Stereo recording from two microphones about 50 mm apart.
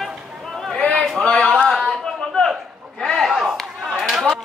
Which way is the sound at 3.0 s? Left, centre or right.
Centre.